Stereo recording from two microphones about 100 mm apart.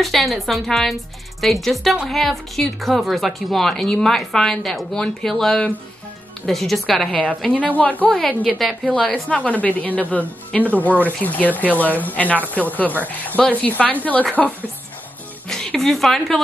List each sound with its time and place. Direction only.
0.0 s a woman's voice: centre (ahead or behind); by 14.2 s 15° left (ahead or behind)
15.4 s speech: 5° left (ahead or behind)